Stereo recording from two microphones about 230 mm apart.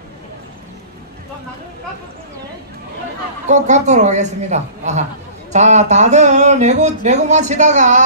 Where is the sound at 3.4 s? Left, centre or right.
Right.